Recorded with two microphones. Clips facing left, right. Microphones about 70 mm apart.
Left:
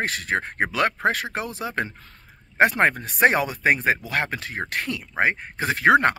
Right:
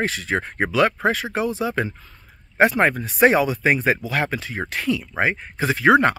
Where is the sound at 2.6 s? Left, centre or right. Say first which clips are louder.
Right 2 dB; left.